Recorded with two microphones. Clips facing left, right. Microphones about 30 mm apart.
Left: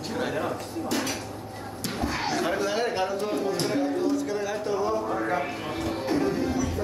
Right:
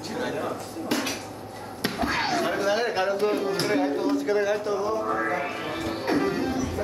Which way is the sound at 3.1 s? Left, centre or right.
Right.